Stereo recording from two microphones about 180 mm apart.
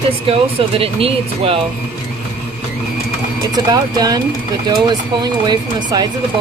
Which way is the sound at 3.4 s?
20° right (ahead or behind).